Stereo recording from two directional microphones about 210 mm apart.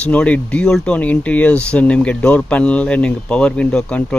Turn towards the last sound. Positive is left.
turn(degrees=5)  # may be behind; listen again after turning